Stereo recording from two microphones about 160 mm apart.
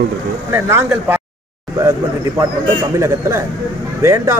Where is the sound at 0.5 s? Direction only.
15° right (ahead or behind).